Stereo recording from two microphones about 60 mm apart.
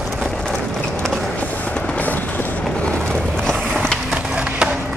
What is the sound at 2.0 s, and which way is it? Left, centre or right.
Train, left.